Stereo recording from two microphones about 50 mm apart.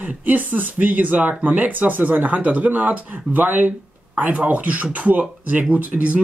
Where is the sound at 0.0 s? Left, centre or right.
Right.